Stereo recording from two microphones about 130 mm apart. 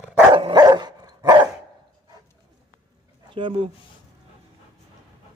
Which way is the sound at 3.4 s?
45° right (ahead or behind).